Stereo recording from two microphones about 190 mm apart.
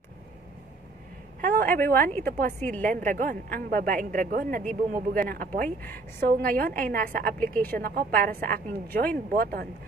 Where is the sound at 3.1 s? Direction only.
45° right (ahead or behind).